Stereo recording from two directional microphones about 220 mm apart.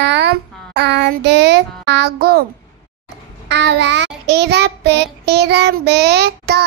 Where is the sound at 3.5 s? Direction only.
55° right (ahead or behind).